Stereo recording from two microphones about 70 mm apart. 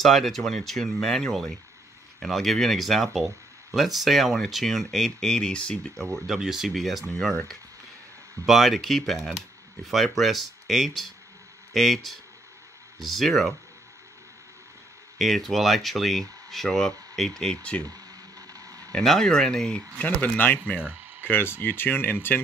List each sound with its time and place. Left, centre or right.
0.0 s speech: centre
6.1 s speech: centre
8.5 s speech: centre
15.1 s speech: centre
17.6 s speech: centre
18.5 s a sound: right
18.9 s speech: centre
20.0 s speech: left